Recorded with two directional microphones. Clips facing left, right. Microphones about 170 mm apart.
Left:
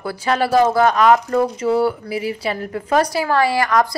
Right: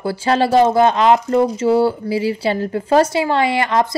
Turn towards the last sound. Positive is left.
turn(degrees=-25)  # may be behind; listen again after turning